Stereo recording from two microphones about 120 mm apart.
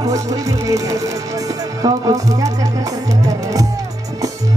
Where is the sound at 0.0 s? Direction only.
30° right (ahead or behind).